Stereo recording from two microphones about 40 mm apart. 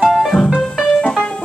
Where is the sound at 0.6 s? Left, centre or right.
Centre.